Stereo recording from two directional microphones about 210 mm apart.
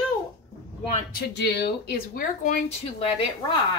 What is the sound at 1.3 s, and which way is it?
Speech, 55° left (ahead or behind).